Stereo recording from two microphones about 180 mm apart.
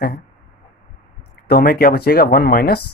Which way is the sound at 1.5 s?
55° left (ahead or behind).